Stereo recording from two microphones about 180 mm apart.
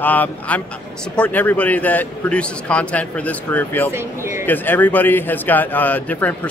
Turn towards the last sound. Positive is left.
turn(degrees=10)  # may be behind; listen again after turning